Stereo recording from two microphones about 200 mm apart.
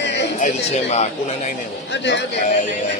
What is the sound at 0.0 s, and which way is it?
Music, 60° left (ahead or behind).